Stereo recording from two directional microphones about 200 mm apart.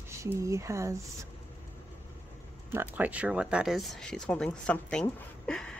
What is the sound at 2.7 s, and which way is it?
Speech, 10° right (ahead or behind).